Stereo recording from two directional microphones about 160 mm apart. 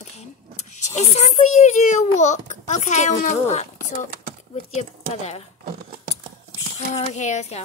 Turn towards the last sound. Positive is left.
turn(degrees=45)  # may be behind; listen again after turning